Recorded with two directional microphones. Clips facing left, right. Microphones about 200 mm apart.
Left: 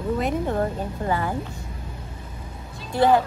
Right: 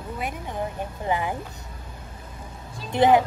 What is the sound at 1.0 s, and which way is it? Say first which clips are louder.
Speech: even; 15° right (ahead or behind).